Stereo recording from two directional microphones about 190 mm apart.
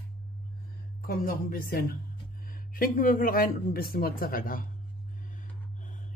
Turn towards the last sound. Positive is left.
turn(degrees=50)  # may be behind; listen again after turning